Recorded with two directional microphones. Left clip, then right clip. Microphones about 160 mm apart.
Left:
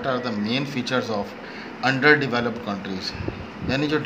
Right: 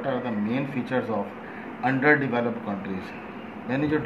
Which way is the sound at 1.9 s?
35° left (ahead or behind).